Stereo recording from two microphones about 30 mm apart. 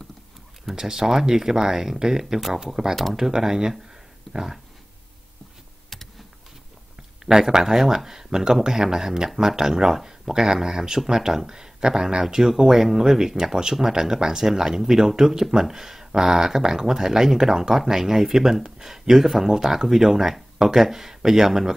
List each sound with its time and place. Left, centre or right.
0.7 s speech: centre
7.2 s speech: centre